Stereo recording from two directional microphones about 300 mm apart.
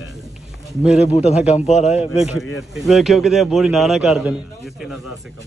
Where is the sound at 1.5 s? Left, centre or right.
Left.